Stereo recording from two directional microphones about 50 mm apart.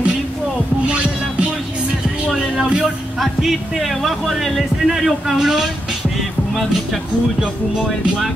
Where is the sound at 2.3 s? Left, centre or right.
Centre.